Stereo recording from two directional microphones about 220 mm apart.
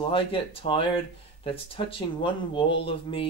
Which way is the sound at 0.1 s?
25° left (ahead or behind).